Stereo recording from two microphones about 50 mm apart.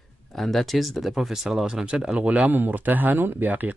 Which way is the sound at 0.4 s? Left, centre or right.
Centre.